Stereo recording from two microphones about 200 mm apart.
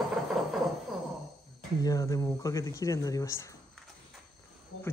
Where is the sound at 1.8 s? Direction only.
15° left (ahead or behind).